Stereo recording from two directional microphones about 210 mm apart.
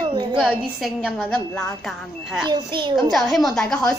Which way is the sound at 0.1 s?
20° right (ahead or behind).